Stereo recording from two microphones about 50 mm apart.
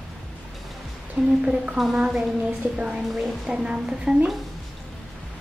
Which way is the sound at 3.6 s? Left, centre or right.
Centre.